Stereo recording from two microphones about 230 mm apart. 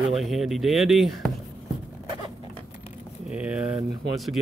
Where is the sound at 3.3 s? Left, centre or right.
Centre.